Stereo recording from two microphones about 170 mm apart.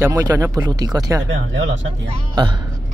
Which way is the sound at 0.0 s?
20° right (ahead or behind).